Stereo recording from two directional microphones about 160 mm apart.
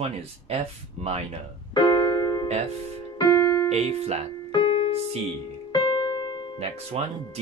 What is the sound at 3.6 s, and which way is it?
Speech, 40° right (ahead or behind).